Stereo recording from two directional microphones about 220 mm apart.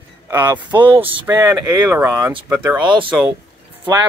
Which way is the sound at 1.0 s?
20° right (ahead or behind).